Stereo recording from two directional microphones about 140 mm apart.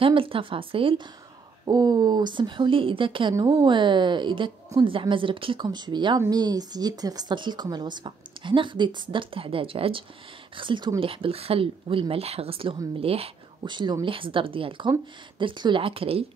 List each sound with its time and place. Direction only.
0.0 s speech: 40° right (ahead or behind)
1.7 s speech: 30° right (ahead or behind); by 16.3 s 45° right (ahead or behind)